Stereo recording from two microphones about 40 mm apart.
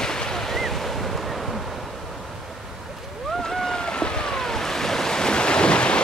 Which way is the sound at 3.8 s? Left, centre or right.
Left.